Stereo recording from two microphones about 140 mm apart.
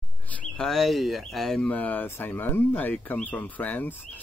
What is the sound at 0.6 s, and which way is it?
Speech, centre (ahead or behind).